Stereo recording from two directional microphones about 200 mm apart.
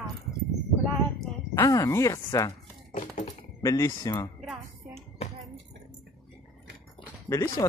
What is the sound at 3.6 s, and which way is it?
Speech, 15° left (ahead or behind).